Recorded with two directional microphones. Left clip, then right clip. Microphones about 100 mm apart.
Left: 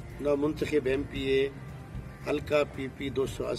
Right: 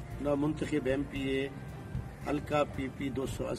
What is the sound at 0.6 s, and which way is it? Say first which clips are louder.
Speech: left 6 dB; 30° right (ahead or behind).